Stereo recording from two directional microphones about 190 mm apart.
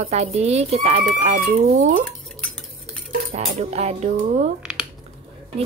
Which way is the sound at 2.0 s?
5° left (ahead or behind).